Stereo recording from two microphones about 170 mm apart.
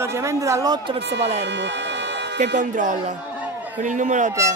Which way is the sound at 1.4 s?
90° right.